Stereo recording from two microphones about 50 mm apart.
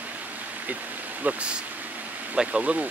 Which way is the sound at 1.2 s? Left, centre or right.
Right.